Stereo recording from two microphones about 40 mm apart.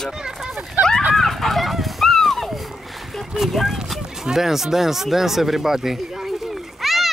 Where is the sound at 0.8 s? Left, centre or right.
Right.